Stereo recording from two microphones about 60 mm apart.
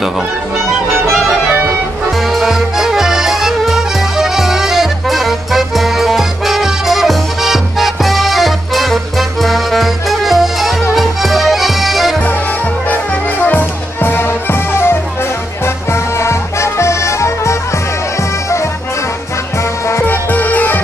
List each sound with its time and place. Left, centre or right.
2.3 s music: centre
13.4 s music: left
19.9 s music: left